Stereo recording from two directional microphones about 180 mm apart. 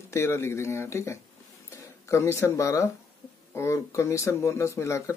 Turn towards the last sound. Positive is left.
turn(degrees=15)  # may be behind; listen again after turning